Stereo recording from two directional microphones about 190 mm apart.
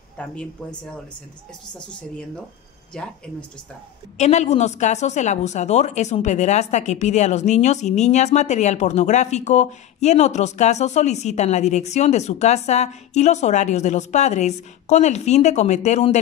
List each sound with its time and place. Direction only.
2.9 s speech: 5° left (ahead or behind)
4.2 s a woman's voice: 35° left (ahead or behind)